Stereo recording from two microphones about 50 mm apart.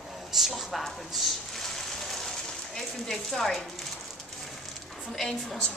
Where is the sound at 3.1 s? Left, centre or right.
Centre.